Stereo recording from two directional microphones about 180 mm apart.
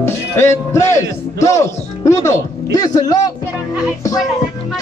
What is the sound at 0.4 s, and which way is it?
A man's voice, 15° left (ahead or behind).